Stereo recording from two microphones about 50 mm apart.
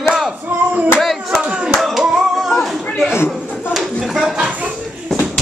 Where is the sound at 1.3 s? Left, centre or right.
Centre.